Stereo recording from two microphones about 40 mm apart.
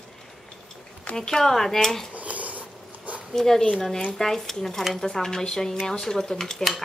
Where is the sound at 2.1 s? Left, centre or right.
Right.